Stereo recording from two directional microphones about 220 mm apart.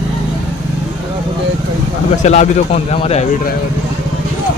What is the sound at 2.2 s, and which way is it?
Speech, 30° left (ahead or behind).